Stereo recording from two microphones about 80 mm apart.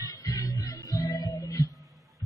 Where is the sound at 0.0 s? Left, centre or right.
Left.